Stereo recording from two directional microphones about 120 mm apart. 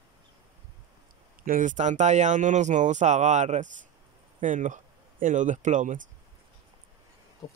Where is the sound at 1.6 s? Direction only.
85° right.